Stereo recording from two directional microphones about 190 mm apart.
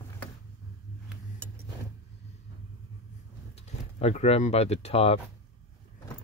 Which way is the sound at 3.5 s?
35° left (ahead or behind).